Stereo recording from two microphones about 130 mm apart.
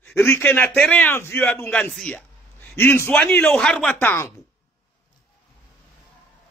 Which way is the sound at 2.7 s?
20° left (ahead or behind).